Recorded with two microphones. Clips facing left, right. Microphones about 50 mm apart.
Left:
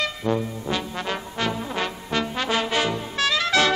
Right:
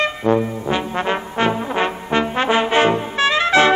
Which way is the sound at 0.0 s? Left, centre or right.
Right.